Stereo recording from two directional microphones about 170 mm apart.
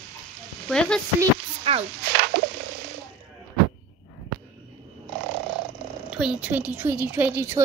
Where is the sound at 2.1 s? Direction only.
75° right (ahead or behind).